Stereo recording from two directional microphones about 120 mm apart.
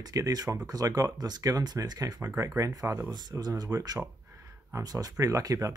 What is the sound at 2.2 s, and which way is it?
Speech, 20° right (ahead or behind).